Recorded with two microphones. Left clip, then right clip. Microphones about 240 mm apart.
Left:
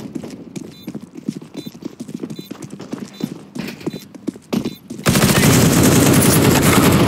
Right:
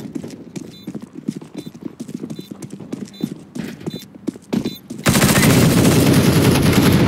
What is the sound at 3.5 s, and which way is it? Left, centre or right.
Clip-clop, centre.